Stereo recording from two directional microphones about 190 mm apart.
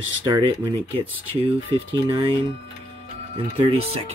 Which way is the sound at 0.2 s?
25° right (ahead or behind).